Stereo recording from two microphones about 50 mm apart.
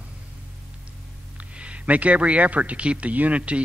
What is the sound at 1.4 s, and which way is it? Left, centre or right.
A man's voice, right.